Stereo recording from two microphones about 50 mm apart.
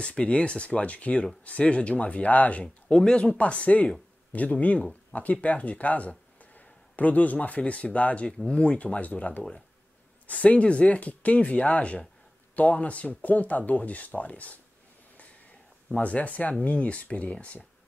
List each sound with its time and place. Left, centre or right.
0.0 s speech: centre
16.0 s speech: left